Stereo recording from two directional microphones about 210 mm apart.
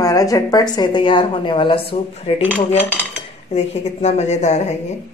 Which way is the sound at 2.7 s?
10° left (ahead or behind).